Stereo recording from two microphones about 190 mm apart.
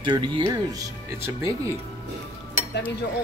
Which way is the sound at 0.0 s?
25° right (ahead or behind).